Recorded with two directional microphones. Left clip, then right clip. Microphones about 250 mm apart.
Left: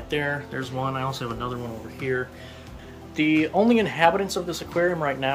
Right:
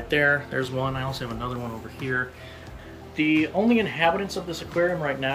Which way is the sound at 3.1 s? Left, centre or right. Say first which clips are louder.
Left 1 dB; centre.